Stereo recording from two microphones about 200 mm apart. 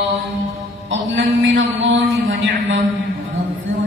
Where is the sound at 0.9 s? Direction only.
70° right (ahead or behind).